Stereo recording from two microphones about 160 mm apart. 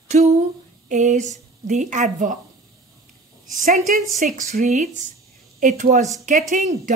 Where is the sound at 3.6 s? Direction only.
55° right (ahead or behind).